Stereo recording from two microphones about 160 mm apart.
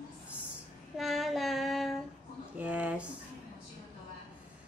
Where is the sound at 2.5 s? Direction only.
10° right (ahead or behind).